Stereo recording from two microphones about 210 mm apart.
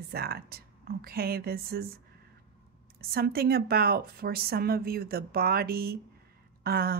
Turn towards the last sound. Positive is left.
turn(degrees=-45)  # may be behind; listen again after turning